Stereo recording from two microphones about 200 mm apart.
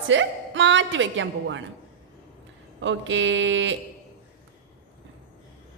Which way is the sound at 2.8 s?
70° right (ahead or behind).